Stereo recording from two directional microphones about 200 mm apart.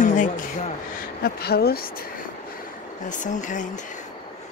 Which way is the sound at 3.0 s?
40° left (ahead or behind).